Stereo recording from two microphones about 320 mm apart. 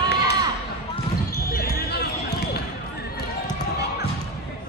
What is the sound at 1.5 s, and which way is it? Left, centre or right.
Basketball bounce, left.